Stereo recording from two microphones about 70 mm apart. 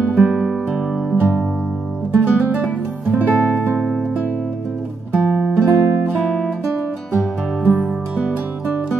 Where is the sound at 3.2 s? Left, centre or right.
Right.